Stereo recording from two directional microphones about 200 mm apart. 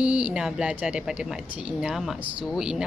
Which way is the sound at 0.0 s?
5° right (ahead or behind).